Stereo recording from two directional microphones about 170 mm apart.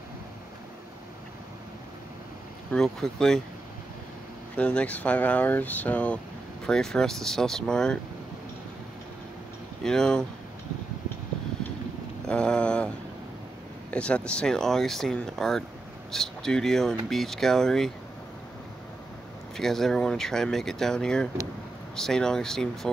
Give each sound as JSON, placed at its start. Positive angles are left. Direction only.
{"t": 2.7, "sound": "speech", "side_deg": 5}
{"t": 4.6, "sound": "speech", "side_deg": 5}
{"t": 9.8, "sound": "speech", "side_deg": 5}
{"t": 12.3, "sound": "speech", "side_deg": 5}
{"t": 19.5, "sound": "speech", "side_deg": 0}